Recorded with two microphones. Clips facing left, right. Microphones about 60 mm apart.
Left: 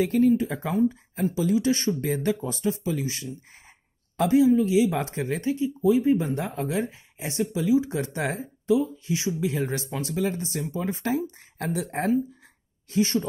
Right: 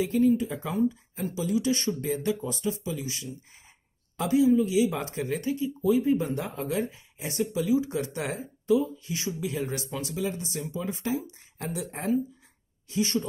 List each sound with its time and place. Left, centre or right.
0.0 s speech: left
2.0 s speech: left
8.7 s speech: left
12.9 s speech: left